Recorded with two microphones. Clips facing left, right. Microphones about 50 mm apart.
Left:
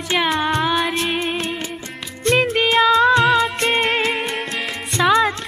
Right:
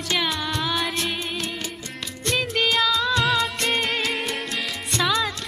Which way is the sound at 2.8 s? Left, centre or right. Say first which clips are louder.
Left 9 dB; left.